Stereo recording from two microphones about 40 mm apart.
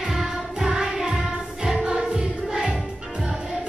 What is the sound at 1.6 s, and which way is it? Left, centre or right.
Choir, centre.